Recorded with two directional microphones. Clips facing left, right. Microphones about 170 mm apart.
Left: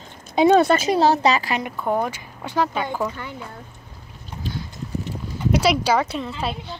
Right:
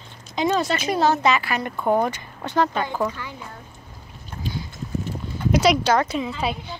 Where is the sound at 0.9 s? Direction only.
35° left (ahead or behind).